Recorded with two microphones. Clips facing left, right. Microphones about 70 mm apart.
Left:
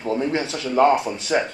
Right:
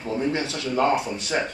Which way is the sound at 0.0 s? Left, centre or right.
Left.